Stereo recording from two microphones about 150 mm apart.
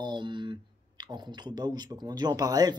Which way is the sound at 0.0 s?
30° right (ahead or behind).